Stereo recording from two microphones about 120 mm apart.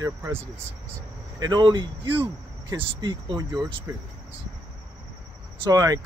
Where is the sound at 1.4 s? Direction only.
40° right (ahead or behind).